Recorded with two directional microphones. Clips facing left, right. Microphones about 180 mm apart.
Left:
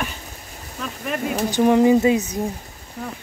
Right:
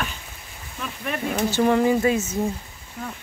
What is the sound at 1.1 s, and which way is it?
Speech, 5° left (ahead or behind).